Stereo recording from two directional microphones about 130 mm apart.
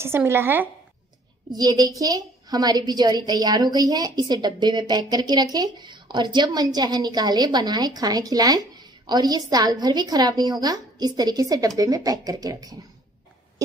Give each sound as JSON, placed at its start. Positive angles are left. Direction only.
{"t": 0.0, "sound": "a woman's voice", "side_deg": -20}
{"t": 1.5, "sound": "a woman's voice", "side_deg": -30}